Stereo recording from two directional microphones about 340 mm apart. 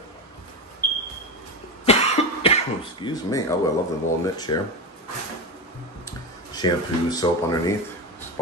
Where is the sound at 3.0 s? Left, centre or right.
Centre.